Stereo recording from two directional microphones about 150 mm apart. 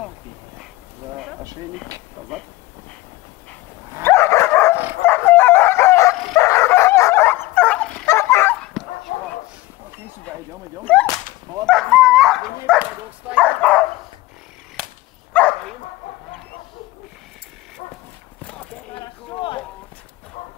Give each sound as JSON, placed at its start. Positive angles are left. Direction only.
{"t": 4.0, "sound": "dog", "side_deg": 15}
{"t": 8.8, "sound": "dog", "side_deg": 0}
{"t": 10.9, "sound": "whip", "side_deg": 10}
{"t": 11.6, "sound": "dog", "side_deg": 0}
{"t": 15.3, "sound": "dog", "side_deg": 10}
{"t": 18.9, "sound": "a sound", "side_deg": 35}